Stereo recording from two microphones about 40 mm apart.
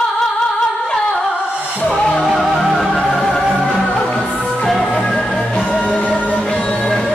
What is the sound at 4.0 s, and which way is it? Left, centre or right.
Music, left.